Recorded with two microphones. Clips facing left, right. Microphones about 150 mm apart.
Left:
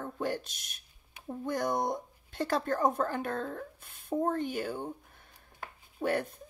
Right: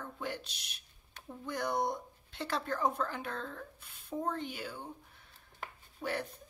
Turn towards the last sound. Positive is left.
turn(degrees=50)  # may be behind; listen again after turning